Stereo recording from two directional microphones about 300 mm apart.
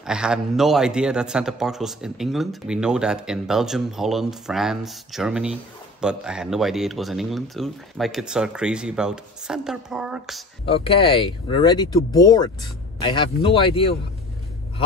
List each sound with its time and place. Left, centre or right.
0.0 s a man's voice: centre
10.6 s speech: centre